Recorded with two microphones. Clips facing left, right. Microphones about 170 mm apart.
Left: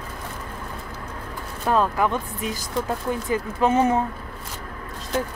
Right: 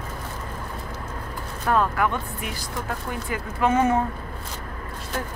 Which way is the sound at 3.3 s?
20° left (ahead or behind).